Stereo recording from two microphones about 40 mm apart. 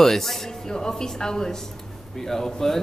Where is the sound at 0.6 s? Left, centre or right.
Centre.